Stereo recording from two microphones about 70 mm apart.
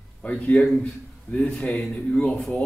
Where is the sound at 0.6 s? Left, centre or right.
Centre.